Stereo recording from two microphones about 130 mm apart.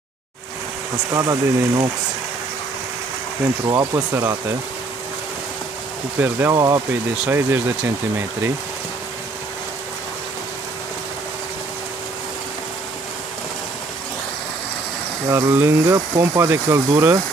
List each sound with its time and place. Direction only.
1.1 s speech: 25° right (ahead or behind)
3.6 s speech: 20° right (ahead or behind)
6.1 s speech: 15° right (ahead or behind)
6.5 s speech: 25° right (ahead or behind)
15.3 s speech: 25° right (ahead or behind)